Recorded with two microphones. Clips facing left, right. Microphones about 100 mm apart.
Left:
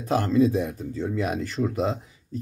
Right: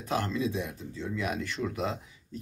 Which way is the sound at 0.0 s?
35° left (ahead or behind).